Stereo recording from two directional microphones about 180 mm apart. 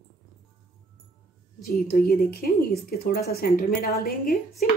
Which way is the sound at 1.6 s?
55° left (ahead or behind).